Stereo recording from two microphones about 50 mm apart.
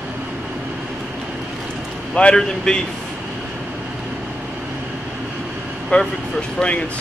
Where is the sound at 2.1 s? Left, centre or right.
Centre.